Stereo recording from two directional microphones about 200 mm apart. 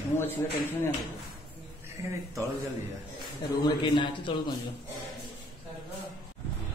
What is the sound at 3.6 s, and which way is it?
Speech, 25° left (ahead or behind).